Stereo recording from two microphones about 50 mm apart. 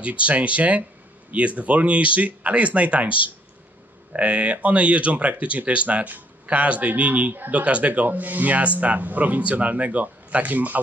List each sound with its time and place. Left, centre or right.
0.0 s speech: right